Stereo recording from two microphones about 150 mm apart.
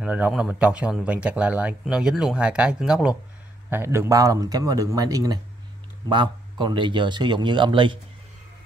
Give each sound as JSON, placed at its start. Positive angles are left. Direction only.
{"t": 0.0, "sound": "speech", "side_deg": -10}
{"t": 3.7, "sound": "a man's voice", "side_deg": -15}